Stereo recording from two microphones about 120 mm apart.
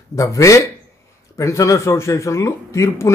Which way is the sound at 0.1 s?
25° left (ahead or behind).